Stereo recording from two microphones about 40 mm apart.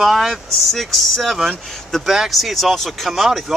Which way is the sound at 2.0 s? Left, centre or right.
Centre.